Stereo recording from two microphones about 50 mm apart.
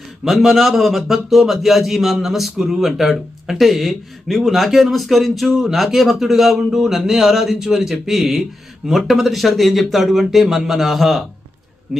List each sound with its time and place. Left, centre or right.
0.2 s speech: centre